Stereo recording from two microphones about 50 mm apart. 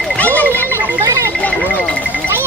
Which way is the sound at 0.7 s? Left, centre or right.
Right.